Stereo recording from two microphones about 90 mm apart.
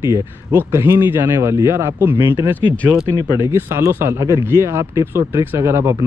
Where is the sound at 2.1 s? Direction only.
65° left (ahead or behind).